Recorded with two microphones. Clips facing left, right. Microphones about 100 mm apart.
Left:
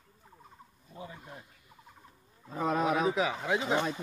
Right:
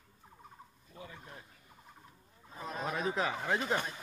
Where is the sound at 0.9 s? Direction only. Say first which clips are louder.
Left 4 dB; 20° left (ahead or behind).